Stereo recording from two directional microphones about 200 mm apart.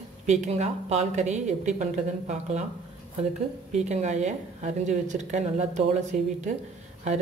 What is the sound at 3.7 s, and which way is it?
A woman's voice, 35° right (ahead or behind).